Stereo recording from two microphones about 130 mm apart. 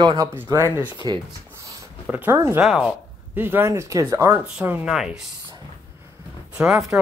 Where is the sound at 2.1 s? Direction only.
15° right (ahead or behind).